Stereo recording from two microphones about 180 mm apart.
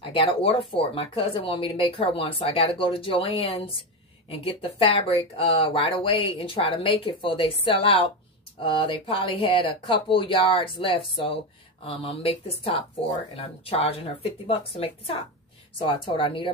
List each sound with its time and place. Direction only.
0.0 s speech: 30° left (ahead or behind)